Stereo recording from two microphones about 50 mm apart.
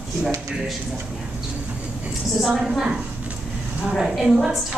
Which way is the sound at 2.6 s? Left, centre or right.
Centre.